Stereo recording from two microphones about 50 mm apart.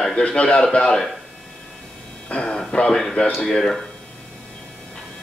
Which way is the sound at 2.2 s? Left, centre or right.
Left.